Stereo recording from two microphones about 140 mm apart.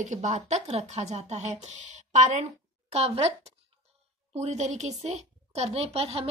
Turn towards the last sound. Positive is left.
turn(degrees=-45)  # may be behind; listen again after turning